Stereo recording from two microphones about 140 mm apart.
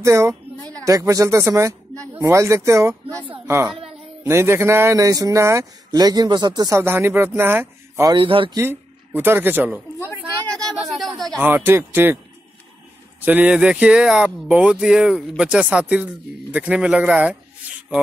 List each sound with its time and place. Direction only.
0.0 s a woman's voice: 20° right (ahead or behind)
6.8 s speech: 15° right (ahead or behind)
8.1 s speech: 35° right (ahead or behind)
8.5 s speech: 15° right (ahead or behind)
9.9 s a sound: 15° left (ahead or behind)
10.5 s a sound: 5° left (ahead or behind)
11.4 s speech: 15° right (ahead or behind)
13.2 s speech: 10° right (ahead or behind)